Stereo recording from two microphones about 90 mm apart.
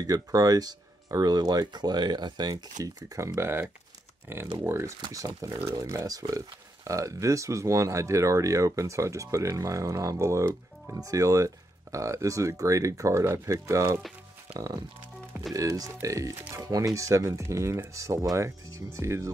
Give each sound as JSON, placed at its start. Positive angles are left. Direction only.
{"t": 0.0, "sound": "speech", "side_deg": -40}
{"t": 15.5, "sound": "speech", "side_deg": -40}